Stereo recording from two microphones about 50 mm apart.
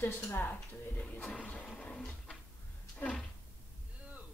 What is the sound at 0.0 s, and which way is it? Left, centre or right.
Speech, left.